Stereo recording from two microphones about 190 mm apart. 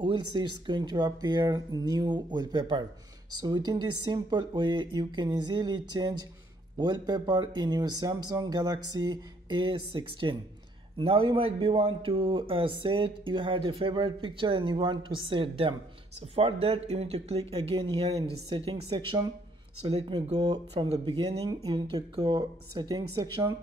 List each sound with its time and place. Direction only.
0.0 s a man's voice: 25° right (ahead or behind)
20.3 s a man's voice: 20° right (ahead or behind)